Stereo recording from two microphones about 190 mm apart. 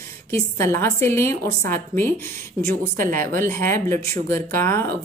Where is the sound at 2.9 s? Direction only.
50° right (ahead or behind).